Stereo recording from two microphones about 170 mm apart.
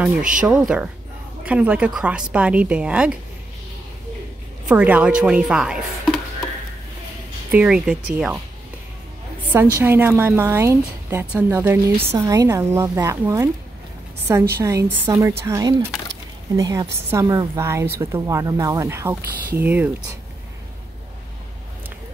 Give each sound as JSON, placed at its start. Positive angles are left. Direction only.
{"t": 0.2, "sound": "speech", "side_deg": -50}
{"t": 0.5, "sound": "a woman's voice", "side_deg": -5}
{"t": 4.6, "sound": "a woman's voice", "side_deg": -5}
{"t": 7.5, "sound": "a woman's voice", "side_deg": -5}
{"t": 9.5, "sound": "a woman's voice", "side_deg": -15}
{"t": 14.6, "sound": "a woman's voice", "side_deg": -20}